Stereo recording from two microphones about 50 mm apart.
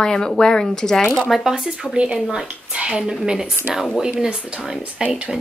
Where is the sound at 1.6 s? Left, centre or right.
Centre.